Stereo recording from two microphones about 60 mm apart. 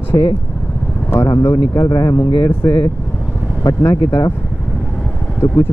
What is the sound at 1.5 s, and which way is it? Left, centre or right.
Speech, left.